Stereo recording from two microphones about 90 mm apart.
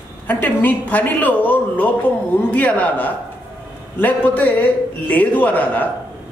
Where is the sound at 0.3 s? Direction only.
20° left (ahead or behind).